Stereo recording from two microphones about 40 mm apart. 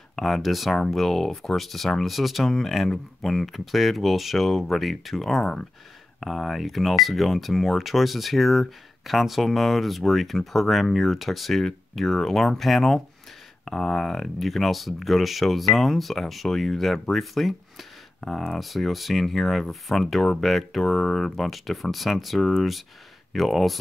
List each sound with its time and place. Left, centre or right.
0.1 s speech: centre
5.4 s speech: centre
6.2 s speech: centre
18.2 s speech: centre